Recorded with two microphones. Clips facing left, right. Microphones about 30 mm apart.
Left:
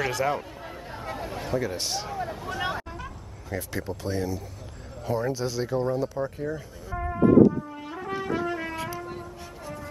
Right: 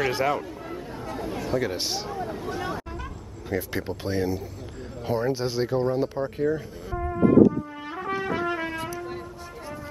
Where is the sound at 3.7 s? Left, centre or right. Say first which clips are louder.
Right 2 dB; right.